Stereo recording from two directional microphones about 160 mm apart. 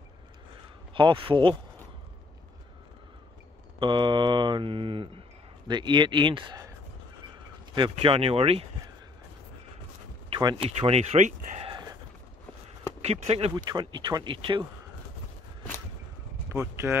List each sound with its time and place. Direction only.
0.9 s speech: 35° right (ahead or behind)
3.8 s mantra: 30° right (ahead or behind)
7.7 s speech: 30° right (ahead or behind)
10.3 s speech: 35° right (ahead or behind)
11.7 s a sound: 25° right (ahead or behind)
13.0 s speech: 40° right (ahead or behind)
13.6 s mantra: 25° right (ahead or behind)
16.4 s speech: 15° right (ahead or behind)